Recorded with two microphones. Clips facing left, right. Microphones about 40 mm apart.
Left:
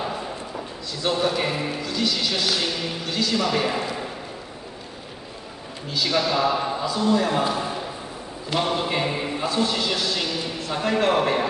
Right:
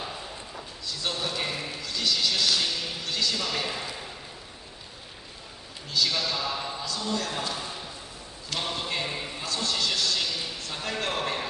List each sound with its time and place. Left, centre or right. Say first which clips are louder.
1.1 s a man's voice: left 11 dB; centre
3.3 s a man's voice: left 8 dB; left
5.9 s a man's voice: left 1 dB; centre
6.1 s a man's voice: left 9 dB; left
7.5 s speech: left 9 dB; left
8.5 s a man's voice: left 8 dB; centre